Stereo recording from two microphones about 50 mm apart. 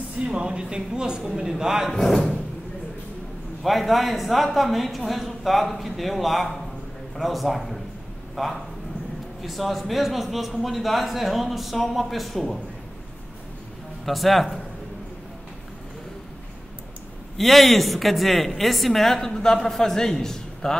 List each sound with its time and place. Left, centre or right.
0.2 s speech: centre
1.9 s a woman's voice: centre
3.6 s a woman's voice: centre
14.0 s a woman's voice: centre
17.4 s a woman's voice: centre